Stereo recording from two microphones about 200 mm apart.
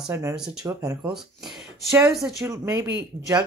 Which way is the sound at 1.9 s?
15° right (ahead or behind).